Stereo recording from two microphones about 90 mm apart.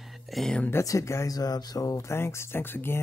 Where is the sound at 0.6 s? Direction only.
25° left (ahead or behind).